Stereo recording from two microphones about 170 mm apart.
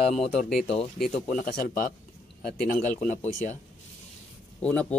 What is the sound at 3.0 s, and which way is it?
Speech, 45° left (ahead or behind).